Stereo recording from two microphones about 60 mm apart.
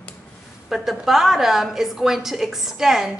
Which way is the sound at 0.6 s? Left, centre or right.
Centre.